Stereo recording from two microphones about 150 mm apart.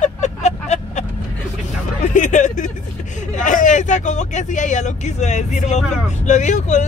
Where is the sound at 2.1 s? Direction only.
55° left (ahead or behind).